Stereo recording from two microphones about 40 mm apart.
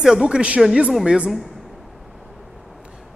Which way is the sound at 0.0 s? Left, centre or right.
Centre.